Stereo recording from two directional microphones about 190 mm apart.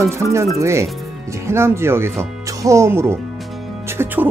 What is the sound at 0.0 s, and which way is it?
Speech, 15° right (ahead or behind).